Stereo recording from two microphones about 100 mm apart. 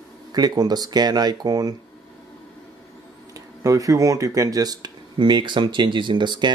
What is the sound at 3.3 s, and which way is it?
Speech, 35° right (ahead or behind).